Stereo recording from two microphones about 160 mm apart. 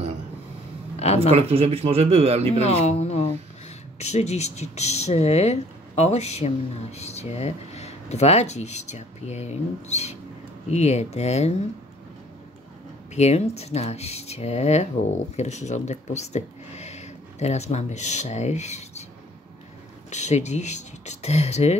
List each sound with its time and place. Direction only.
0.9 s a sound: 40° left (ahead or behind)
1.3 s a man's voice: 40° right (ahead or behind)
2.6 s speech: 40° left (ahead or behind)
13.1 s speech: 45° left (ahead or behind)
20.1 s speech: 45° left (ahead or behind)